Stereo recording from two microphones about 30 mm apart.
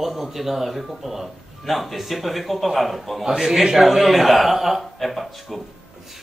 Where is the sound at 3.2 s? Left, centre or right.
Centre.